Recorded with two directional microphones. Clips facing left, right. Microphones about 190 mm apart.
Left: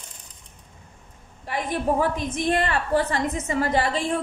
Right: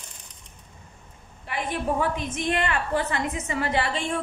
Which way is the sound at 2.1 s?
35° left (ahead or behind).